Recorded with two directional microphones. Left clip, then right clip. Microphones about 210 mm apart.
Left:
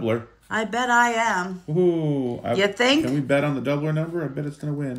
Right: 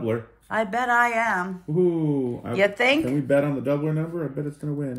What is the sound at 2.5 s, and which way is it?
Speech, 15° left (ahead or behind).